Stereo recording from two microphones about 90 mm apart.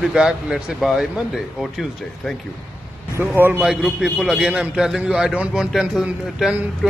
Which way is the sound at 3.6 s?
Centre (ahead or behind).